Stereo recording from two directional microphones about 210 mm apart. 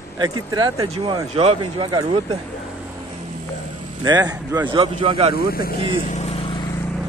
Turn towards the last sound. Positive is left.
turn(degrees=20)  # may be behind; listen again after turning